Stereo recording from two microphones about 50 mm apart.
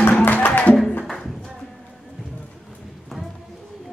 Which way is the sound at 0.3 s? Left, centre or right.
Left.